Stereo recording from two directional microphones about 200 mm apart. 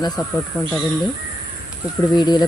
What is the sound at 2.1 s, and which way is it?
Speech, 20° left (ahead or behind).